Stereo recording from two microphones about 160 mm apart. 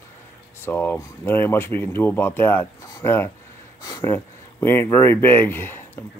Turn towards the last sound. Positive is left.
turn(degrees=15)  # may be behind; listen again after turning